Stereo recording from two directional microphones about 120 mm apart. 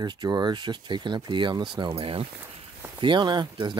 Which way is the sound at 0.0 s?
35° right (ahead or behind).